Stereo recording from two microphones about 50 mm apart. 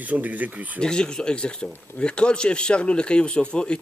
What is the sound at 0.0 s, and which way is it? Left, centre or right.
Speech, right.